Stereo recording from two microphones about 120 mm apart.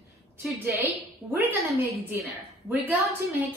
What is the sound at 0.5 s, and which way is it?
A woman's voice, 15° right (ahead or behind).